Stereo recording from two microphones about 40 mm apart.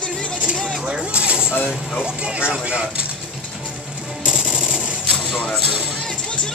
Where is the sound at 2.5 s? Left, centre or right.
Right.